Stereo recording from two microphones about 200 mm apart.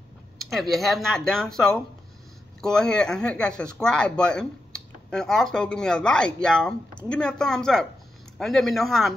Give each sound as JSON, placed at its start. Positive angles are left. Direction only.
{"t": 0.4, "sound": "speech", "side_deg": 0}